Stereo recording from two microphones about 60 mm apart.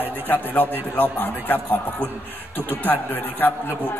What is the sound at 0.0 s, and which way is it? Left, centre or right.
A man's voice, left.